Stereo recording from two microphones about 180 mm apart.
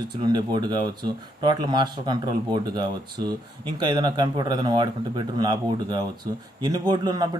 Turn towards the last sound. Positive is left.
turn(degrees=-20)  # may be behind; listen again after turning